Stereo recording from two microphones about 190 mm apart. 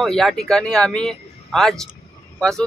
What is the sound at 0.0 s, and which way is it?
Speech, centre (ahead or behind).